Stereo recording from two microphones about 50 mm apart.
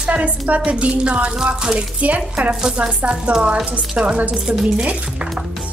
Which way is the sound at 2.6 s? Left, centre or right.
Centre.